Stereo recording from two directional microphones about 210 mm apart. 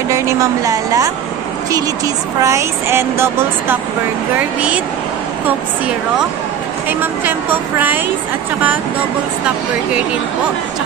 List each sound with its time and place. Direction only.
0.1 s speech: 15° right (ahead or behind)
2.4 s speech: 10° right (ahead or behind)
6.9 s speech: 10° right (ahead or behind)